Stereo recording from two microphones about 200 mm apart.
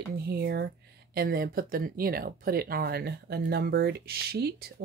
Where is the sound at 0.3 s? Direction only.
55° right (ahead or behind).